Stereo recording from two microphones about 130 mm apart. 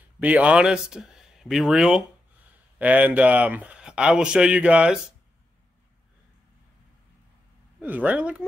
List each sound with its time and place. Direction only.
0.2 s speech: 10° right (ahead or behind)
7.8 s speech: 10° right (ahead or behind)